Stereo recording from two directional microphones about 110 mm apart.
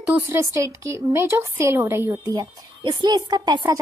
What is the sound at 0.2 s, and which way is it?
A woman's voice, 25° right (ahead or behind).